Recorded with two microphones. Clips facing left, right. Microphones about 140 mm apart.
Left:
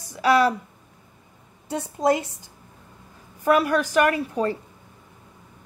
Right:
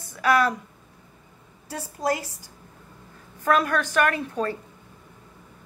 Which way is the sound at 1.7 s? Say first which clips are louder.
Left 5 dB; 20° left (ahead or behind).